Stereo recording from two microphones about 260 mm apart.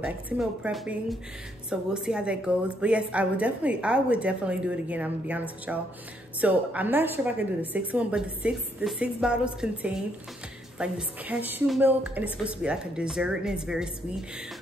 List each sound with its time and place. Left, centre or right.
0.0 s a woman's voice: centre